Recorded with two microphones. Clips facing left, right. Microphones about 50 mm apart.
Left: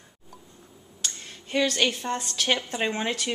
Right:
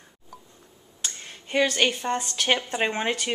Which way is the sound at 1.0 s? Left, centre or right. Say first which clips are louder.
Even; centre.